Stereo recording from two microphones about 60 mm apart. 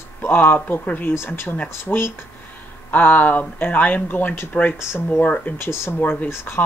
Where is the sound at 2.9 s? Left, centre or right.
Left.